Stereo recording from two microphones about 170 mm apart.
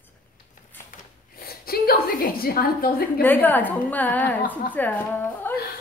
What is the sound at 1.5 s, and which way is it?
A woman's voice, 60° left (ahead or behind).